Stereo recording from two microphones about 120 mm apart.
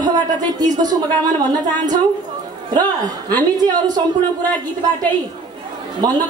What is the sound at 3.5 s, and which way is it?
Speech, 35° right (ahead or behind).